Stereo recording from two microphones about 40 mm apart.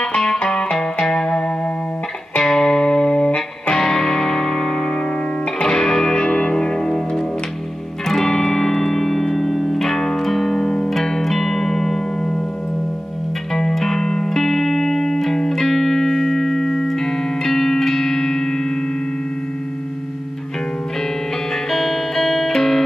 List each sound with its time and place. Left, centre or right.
0.0 s music: centre
2.4 s music: centre
13.5 s music: centre
21.6 s music: centre